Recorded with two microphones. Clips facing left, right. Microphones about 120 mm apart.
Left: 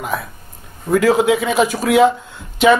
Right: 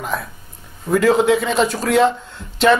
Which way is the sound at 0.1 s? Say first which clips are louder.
Left 1 dB; 5° left (ahead or behind).